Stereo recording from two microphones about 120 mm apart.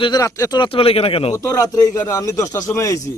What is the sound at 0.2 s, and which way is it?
Speech, 25° left (ahead or behind).